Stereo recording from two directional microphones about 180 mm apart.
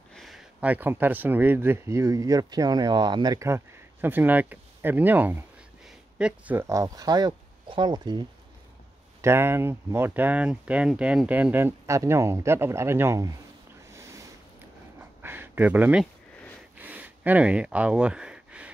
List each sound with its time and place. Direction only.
0.1 s speech: centre (ahead or behind); by 8.3 s 25° right (ahead or behind)
9.2 s speech: 15° right (ahead or behind)
15.0 s a sound: 10° right (ahead or behind)
16.7 s gasp: 10° right (ahead or behind)